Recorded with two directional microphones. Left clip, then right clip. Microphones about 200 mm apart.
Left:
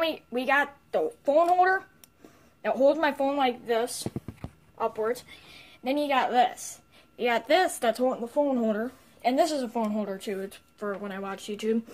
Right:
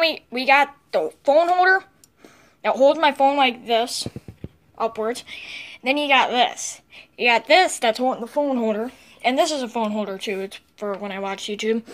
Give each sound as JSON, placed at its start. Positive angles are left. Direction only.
{"t": 0.0, "sound": "a woman's voice", "side_deg": 5}
{"t": 5.9, "sound": "a woman's voice", "side_deg": -10}
{"t": 8.1, "sound": "a woman's voice", "side_deg": -10}